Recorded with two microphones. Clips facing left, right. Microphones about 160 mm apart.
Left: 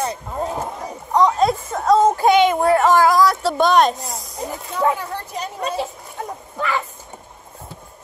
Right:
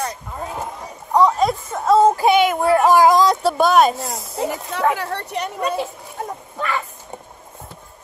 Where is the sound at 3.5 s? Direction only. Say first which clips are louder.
Even; 5° right (ahead or behind).